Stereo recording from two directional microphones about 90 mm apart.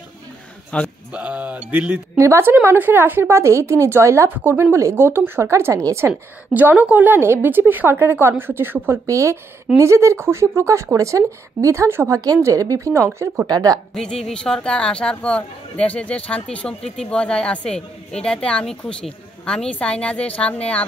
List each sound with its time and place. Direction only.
0.7 s a man's voice: 10° left (ahead or behind)
1.1 s speech: 15° right (ahead or behind)
2.1 s a woman's voice: 30° right (ahead or behind)
6.5 s a woman's voice: 20° right (ahead or behind); by 13.7 s 45° right (ahead or behind)
13.9 s speech: 5° left (ahead or behind)